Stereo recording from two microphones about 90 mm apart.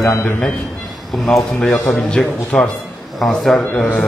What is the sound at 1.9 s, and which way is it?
A man's voice, 15° left (ahead or behind).